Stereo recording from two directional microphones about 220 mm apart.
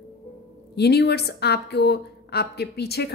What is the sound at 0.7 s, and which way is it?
A woman's voice, 50° left (ahead or behind).